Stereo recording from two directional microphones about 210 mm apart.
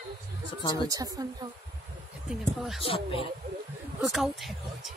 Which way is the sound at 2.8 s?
25° left (ahead or behind).